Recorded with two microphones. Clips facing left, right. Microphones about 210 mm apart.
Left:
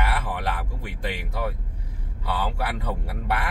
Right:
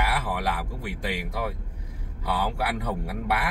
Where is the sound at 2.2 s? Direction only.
15° right (ahead or behind).